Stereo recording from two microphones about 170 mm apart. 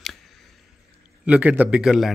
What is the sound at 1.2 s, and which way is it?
Speech, 10° right (ahead or behind).